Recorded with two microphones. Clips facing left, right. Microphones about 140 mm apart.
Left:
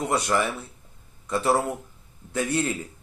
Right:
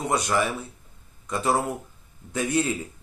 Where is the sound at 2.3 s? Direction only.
15° right (ahead or behind).